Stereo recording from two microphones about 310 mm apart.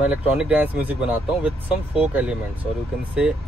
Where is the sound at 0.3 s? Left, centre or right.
Centre.